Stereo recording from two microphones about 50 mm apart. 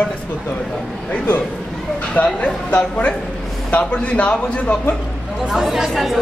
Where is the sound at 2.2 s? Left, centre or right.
Left.